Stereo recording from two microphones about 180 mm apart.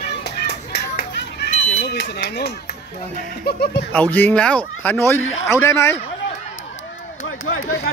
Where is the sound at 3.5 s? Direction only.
60° left (ahead or behind).